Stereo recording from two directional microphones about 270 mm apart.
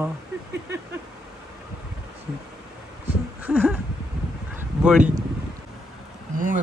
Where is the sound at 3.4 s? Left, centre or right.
Centre.